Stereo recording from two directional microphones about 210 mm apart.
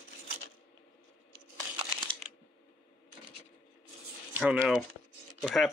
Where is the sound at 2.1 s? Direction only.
25° right (ahead or behind).